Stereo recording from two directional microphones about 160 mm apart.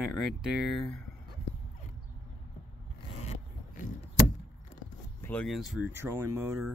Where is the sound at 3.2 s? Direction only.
45° left (ahead or behind).